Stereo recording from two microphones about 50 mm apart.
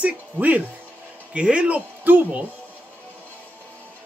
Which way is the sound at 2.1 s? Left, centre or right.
Right.